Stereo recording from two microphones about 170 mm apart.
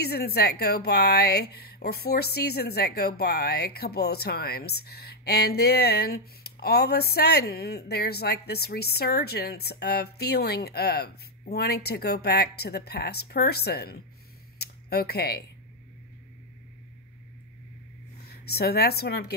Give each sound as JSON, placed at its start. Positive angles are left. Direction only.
{"t": 0.0, "sound": "a woman's voice", "side_deg": 65}
{"t": 14.6, "sound": "a sound", "side_deg": 70}
{"t": 18.2, "sound": "speech", "side_deg": 65}